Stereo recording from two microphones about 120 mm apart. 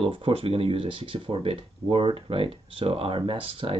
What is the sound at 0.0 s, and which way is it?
Speech, 45° right (ahead or behind).